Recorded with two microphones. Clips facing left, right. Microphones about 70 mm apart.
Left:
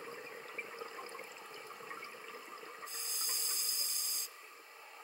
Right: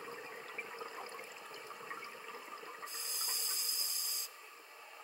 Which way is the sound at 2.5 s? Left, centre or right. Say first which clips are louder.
Right 1 dB; right.